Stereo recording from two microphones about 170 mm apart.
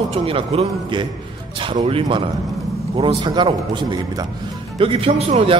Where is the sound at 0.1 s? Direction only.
35° right (ahead or behind).